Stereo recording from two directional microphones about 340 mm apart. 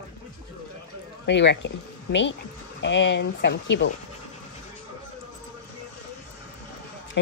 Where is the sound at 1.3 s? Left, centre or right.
Left.